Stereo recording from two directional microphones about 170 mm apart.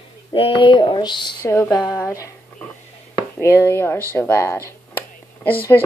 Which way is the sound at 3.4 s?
15° left (ahead or behind).